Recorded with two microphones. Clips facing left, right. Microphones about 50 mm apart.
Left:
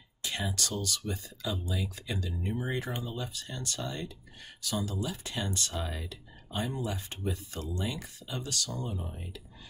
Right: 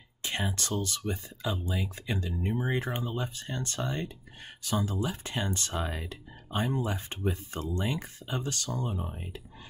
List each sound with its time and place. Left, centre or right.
0.2 s speech: right